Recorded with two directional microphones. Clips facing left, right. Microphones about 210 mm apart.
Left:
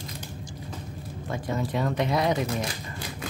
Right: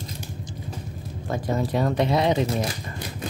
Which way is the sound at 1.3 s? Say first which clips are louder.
Right 4 dB; 40° right (ahead or behind).